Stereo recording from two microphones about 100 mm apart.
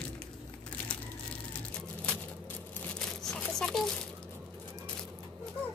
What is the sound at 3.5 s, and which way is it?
Speech, 5° left (ahead or behind).